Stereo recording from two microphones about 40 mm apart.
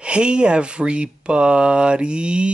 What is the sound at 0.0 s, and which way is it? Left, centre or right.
Speech, right.